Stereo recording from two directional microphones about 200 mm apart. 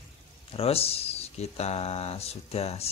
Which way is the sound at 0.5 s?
30° left (ahead or behind).